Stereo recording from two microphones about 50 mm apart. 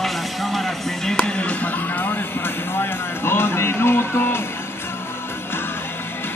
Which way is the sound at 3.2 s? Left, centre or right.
Left.